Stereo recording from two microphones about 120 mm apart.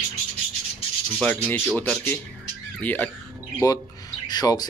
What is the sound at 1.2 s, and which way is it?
Speech, 15° left (ahead or behind).